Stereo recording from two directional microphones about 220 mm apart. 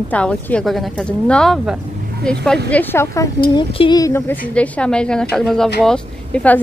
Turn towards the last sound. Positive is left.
turn(degrees=5)  # may be behind; listen again after turning